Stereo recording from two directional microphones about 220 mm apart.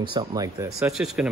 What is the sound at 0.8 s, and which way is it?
Speech, centre (ahead or behind).